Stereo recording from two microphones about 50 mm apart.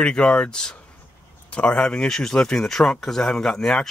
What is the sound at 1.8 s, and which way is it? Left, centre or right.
Speech, centre.